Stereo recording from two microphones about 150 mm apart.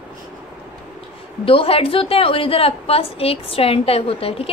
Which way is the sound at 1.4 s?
40° left (ahead or behind).